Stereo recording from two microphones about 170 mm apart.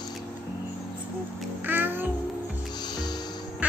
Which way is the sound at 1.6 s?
10° right (ahead or behind).